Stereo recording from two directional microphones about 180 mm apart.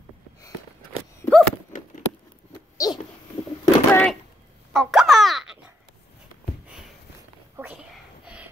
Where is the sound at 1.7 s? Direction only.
45° left (ahead or behind).